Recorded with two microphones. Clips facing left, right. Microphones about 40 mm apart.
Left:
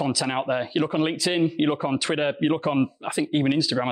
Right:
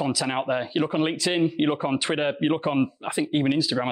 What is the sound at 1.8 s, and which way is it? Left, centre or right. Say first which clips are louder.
Speech: even; right.